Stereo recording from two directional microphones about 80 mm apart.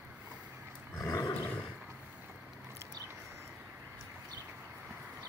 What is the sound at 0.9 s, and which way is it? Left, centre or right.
Roar, left.